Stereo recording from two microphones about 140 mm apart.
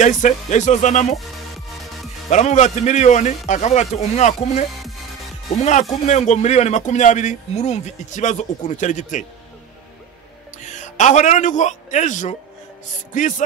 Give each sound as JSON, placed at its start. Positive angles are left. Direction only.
{"t": 0.0, "sound": "a man's voice", "side_deg": 60}
{"t": 1.1, "sound": "music", "side_deg": 0}
{"t": 2.2, "sound": "a man's voice", "side_deg": 55}
{"t": 4.6, "sound": "music", "side_deg": 0}
{"t": 5.6, "sound": "a man's voice", "side_deg": 60}
{"t": 10.6, "sound": "a man's voice", "side_deg": 60}